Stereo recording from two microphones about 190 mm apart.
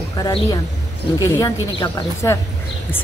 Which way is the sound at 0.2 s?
20° left (ahead or behind).